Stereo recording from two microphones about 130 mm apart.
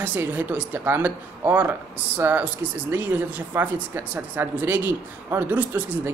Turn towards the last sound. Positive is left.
turn(degrees=-15)  # may be behind; listen again after turning